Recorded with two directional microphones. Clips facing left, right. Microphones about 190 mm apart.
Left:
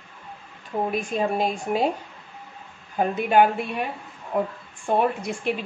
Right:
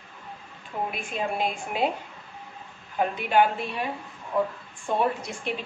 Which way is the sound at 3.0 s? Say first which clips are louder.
Left 3 dB; 50° left (ahead or behind).